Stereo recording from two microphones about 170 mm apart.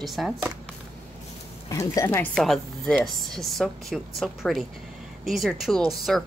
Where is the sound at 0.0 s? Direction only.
Centre (ahead or behind).